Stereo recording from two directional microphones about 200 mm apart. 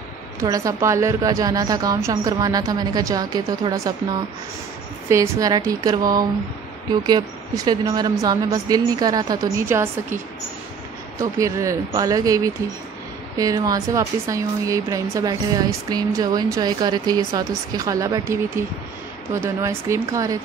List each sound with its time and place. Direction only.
0.4 s a woman's voice: 15° right (ahead or behind)